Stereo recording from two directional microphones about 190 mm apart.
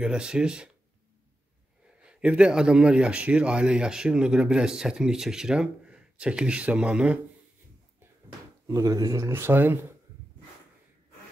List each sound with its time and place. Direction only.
0.0 s a man's voice: 5° right (ahead or behind)
2.0 s a man's voice: 5° right (ahead or behind)
8.6 s speech: 15° right (ahead or behind)